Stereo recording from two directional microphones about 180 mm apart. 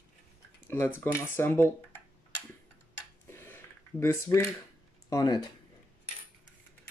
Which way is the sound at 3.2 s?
10° left (ahead or behind).